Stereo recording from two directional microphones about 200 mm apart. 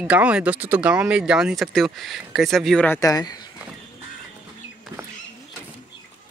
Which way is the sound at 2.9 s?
15° left (ahead or behind).